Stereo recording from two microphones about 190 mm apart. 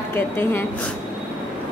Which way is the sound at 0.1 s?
10° left (ahead or behind).